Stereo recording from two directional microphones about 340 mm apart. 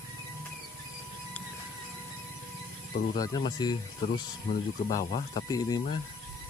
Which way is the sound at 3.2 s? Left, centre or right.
Centre.